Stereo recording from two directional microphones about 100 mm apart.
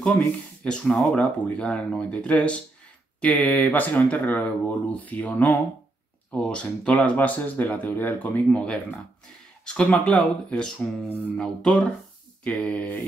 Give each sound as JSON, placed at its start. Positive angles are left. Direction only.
{"t": 0.7, "sound": "speech", "side_deg": 5}